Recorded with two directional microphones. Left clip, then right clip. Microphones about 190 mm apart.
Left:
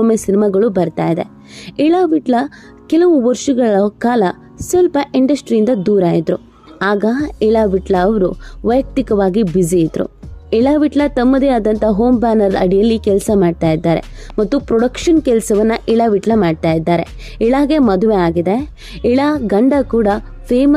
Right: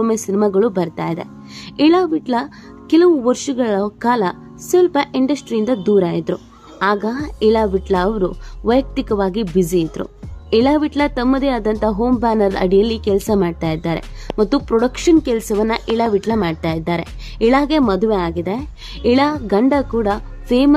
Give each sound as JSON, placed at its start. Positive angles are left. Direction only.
{"t": 0.0, "sound": "speech", "side_deg": 15}